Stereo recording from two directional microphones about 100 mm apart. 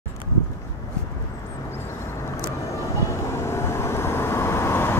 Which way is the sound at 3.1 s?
25° left (ahead or behind).